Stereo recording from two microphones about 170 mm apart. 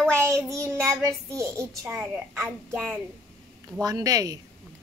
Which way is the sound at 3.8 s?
20° right (ahead or behind).